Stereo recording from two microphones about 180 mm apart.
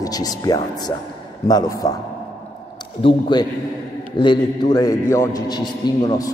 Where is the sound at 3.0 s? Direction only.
25° left (ahead or behind).